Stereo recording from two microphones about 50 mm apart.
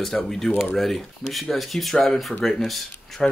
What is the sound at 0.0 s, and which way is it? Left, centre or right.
Speech, centre.